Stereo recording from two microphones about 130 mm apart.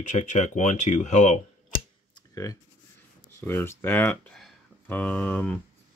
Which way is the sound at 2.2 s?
25° left (ahead or behind).